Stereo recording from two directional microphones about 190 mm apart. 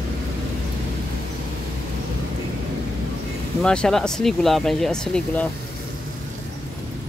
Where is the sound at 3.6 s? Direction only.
5° left (ahead or behind).